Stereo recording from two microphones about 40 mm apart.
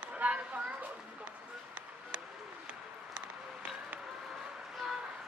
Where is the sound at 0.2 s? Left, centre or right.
Right.